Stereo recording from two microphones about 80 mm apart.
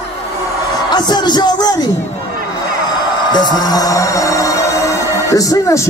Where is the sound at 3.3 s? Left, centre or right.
Left.